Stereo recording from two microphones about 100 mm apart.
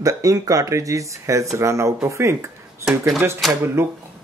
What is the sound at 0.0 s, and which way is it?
Speech, 35° right (ahead or behind).